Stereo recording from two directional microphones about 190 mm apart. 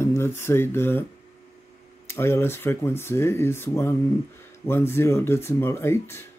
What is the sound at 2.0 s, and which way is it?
Speech, 15° left (ahead or behind).